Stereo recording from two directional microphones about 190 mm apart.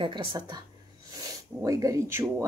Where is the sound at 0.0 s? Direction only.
25° right (ahead or behind).